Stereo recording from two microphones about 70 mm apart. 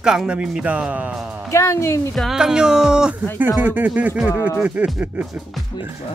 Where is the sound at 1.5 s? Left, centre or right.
Left.